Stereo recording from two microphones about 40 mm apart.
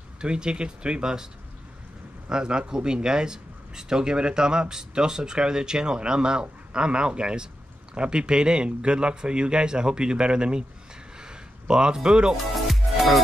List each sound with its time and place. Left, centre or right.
0.2 s speech: right
2.2 s speech: right
11.1 s a sound: centre
12.5 s music: centre